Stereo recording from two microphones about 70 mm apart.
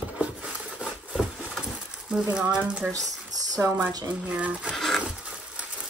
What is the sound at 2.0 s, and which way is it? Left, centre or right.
Speech, centre.